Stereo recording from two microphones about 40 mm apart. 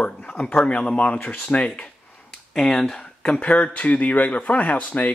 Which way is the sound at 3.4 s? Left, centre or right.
Left.